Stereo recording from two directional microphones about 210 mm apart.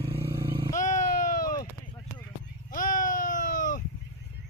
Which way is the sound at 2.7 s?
40° left (ahead or behind).